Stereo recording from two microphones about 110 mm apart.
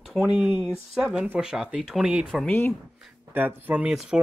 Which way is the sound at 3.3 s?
15° right (ahead or behind).